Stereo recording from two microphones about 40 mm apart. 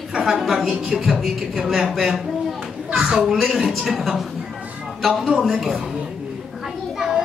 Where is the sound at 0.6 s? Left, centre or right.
Right.